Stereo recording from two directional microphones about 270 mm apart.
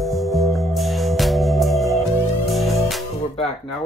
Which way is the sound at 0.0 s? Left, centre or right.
Centre.